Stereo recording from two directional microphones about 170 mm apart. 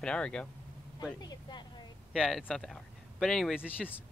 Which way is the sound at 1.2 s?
25° left (ahead or behind).